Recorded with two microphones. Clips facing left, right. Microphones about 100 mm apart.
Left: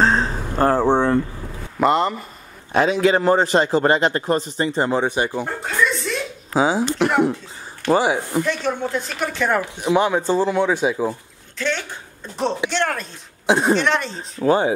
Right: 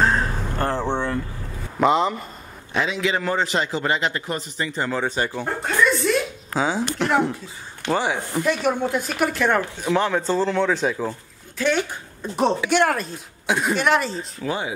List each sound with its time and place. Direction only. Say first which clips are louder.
0.0 s a sound: left 2 dB; 25° left (ahead or behind)
0.7 s a sound: left 8 dB; 40° left (ahead or behind)
1.8 s speech: left 1 dB; centre (ahead or behind)
2.7 s a man's voice: left 7 dB; 45° left (ahead or behind); by 5.0 s 30° left (ahead or behind)
5.0 s speech: left 3 dB; 15° left (ahead or behind)
5.4 s chuckle: right 1 dB; centre (ahead or behind)
6.5 s speech: left 5 dB; 10° left (ahead or behind)
8.5 s a woman's voice: right 1 dB; 10° right (ahead or behind)
9.8 s speech: left 3 dB; 15° left (ahead or behind)
11.5 s a woman's voice: right 3 dB; 10° right (ahead or behind)
13.5 s a man's voice: left 5 dB; 30° left (ahead or behind)
13.7 s speech: even; 5° right (ahead or behind)
14.4 s a man's voice: left 10 dB; 40° left (ahead or behind)